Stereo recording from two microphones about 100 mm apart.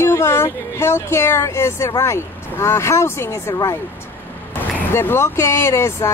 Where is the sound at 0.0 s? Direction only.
30° left (ahead or behind).